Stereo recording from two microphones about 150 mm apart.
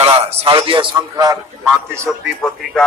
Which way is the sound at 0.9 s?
25° right (ahead or behind).